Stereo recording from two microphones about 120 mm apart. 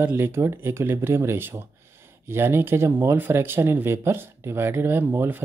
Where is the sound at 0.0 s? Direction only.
20° right (ahead or behind).